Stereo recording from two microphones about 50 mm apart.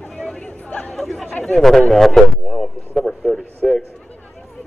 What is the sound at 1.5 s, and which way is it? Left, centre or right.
Radio, centre.